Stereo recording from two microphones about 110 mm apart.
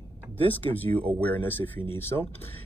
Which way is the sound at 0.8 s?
15° left (ahead or behind).